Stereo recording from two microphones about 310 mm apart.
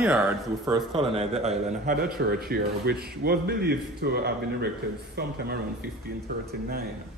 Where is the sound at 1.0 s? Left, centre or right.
Centre.